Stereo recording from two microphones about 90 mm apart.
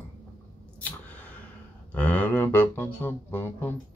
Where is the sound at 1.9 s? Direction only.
15° left (ahead or behind).